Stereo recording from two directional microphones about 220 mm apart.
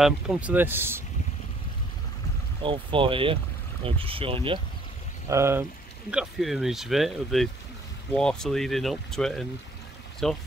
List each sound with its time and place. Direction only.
0.0 s speech: 5° right (ahead or behind)
2.6 s speech: 25° right (ahead or behind)
5.3 s speech: 10° right (ahead or behind)